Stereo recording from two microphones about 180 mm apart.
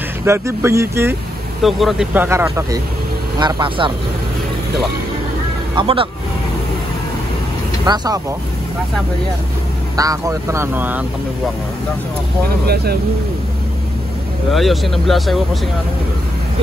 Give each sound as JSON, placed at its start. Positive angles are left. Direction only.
{"t": 0.2, "sound": "speech", "side_deg": -15}
{"t": 1.6, "sound": "speech", "side_deg": 0}
{"t": 5.8, "sound": "speech", "side_deg": -30}
{"t": 7.8, "sound": "speech", "side_deg": -20}
{"t": 9.9, "sound": "speech", "side_deg": -20}
{"t": 12.6, "sound": "speech", "side_deg": -60}
{"t": 14.5, "sound": "speech", "side_deg": 0}